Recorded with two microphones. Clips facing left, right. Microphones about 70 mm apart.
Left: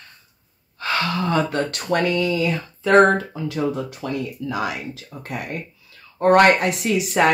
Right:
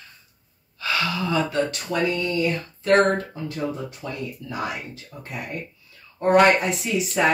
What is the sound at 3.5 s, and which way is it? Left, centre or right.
Speech, left.